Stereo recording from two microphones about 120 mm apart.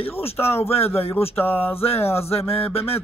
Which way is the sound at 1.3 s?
15° left (ahead or behind).